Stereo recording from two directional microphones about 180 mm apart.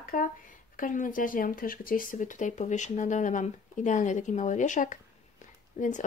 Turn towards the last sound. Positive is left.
turn(degrees=45)  # may be behind; listen again after turning